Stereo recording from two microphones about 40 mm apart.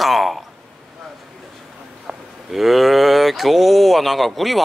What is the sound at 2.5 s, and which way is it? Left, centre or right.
Speech, centre.